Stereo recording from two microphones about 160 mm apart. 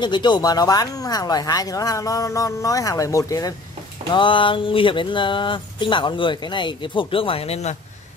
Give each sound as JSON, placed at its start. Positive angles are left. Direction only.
{"t": 0.0, "sound": "speech", "side_deg": 30}
{"t": 4.1, "sound": "speech", "side_deg": 30}